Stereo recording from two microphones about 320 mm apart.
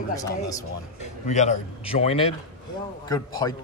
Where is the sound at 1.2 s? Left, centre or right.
Left.